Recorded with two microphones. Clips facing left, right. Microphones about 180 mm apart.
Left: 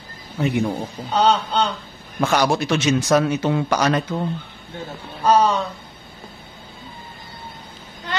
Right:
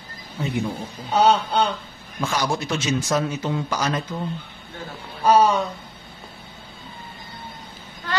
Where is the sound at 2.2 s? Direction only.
65° left (ahead or behind).